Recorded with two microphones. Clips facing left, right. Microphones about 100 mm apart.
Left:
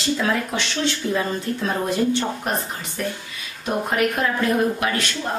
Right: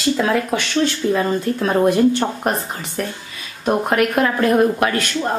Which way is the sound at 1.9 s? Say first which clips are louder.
Right 5 dB; 50° right (ahead or behind).